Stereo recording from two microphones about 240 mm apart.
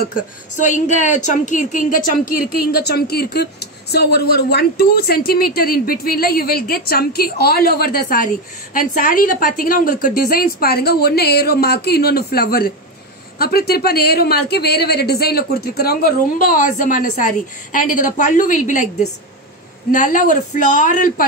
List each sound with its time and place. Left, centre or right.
0.1 s speech: left
19.9 s speech: left